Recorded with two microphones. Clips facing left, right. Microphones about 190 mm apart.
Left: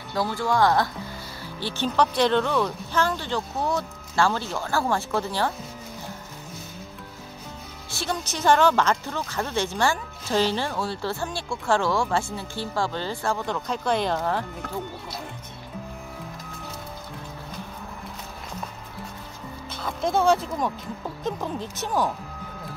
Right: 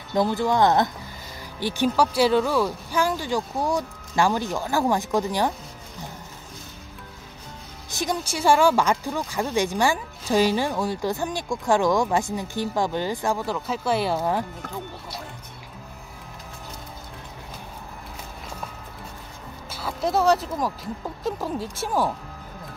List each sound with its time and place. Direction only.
0.1 s speech: 20° right (ahead or behind)
7.9 s speech: 15° right (ahead or behind)
19.7 s speech: 5° right (ahead or behind)